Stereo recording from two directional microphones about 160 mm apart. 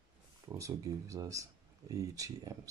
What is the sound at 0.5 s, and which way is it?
Speech, 20° right (ahead or behind).